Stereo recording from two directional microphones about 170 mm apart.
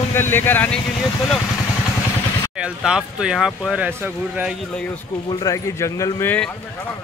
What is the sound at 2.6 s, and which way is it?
Speech, 5° right (ahead or behind).